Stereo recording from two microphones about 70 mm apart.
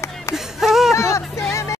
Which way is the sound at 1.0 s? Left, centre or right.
Left.